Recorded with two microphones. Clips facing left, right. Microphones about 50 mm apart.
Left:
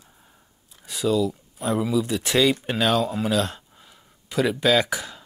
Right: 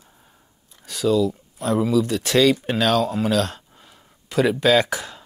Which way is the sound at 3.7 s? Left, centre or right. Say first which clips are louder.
Right 2 dB; centre.